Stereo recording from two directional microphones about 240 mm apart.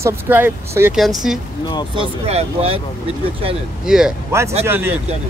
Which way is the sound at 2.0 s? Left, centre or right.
Right.